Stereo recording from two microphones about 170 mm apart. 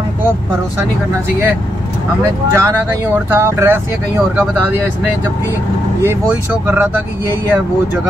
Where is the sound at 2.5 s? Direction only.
15° right (ahead or behind).